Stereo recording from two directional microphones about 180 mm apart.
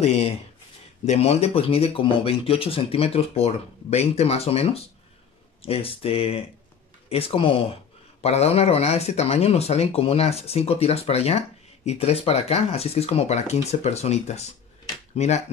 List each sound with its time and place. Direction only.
1.0 s speech: 35° left (ahead or behind)